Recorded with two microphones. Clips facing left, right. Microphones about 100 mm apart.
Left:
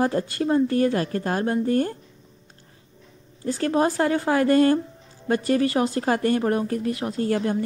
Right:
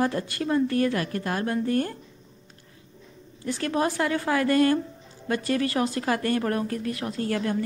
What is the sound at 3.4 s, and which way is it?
A woman's voice, 30° left (ahead or behind).